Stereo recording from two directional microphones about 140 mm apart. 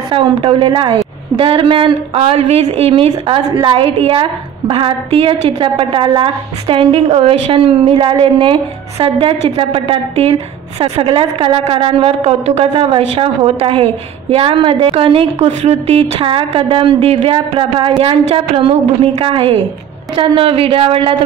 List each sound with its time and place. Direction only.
0.1 s a woman's voice: 40° right (ahead or behind)